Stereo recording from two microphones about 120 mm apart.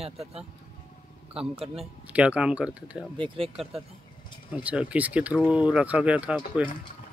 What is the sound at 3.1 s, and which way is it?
Speech, 45° right (ahead or behind).